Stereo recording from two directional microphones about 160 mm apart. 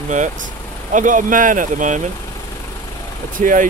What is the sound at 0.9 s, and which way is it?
Speech, 55° right (ahead or behind).